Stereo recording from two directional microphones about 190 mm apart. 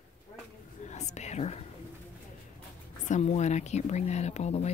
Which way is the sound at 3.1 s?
35° left (ahead or behind).